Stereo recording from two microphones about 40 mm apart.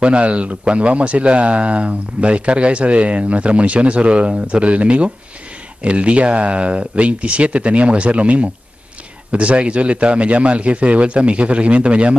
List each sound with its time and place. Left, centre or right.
0.0 s speech: right